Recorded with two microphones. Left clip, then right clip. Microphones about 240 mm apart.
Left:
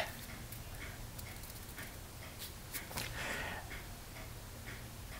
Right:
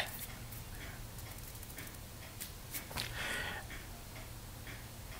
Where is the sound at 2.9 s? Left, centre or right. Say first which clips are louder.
Right 2 dB; centre.